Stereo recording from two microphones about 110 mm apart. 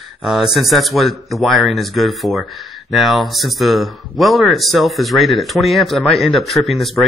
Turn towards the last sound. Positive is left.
turn(degrees=0)  # may be behind; listen again after turning